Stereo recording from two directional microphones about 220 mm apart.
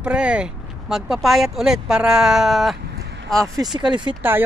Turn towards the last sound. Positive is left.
turn(degrees=-10)  # may be behind; listen again after turning